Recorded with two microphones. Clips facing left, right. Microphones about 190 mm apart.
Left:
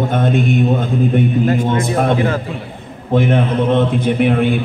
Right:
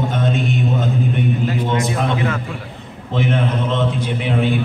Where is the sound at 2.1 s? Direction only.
30° left (ahead or behind).